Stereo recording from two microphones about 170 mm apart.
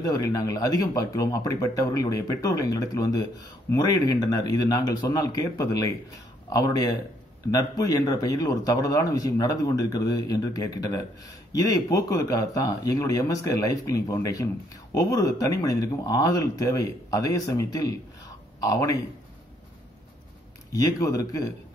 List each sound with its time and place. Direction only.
0.0 s speech: 20° left (ahead or behind)
20.7 s speech: 20° left (ahead or behind)